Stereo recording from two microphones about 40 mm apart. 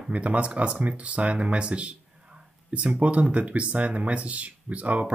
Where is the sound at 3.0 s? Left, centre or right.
Right.